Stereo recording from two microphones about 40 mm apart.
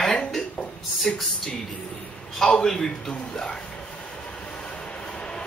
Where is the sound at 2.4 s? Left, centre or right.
Centre.